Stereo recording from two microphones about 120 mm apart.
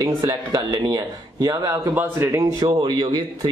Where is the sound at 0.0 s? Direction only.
35° right (ahead or behind).